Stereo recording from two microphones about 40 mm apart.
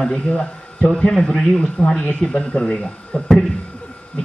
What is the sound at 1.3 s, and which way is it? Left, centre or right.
Speech, centre.